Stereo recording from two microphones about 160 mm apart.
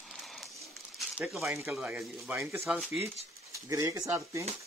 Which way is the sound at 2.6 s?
Centre (ahead or behind).